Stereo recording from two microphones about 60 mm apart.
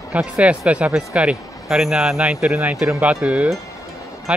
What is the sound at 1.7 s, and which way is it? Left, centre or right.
Speech, centre.